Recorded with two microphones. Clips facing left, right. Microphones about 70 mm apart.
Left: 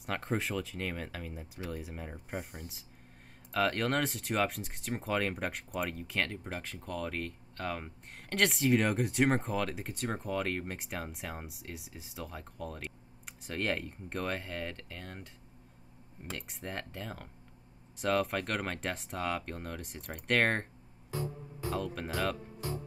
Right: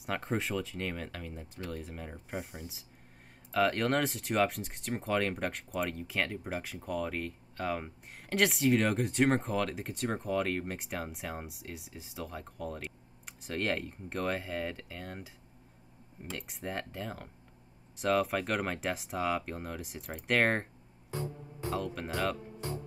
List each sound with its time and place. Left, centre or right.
0.0 s speech: centre
21.1 s music: right
21.7 s speech: centre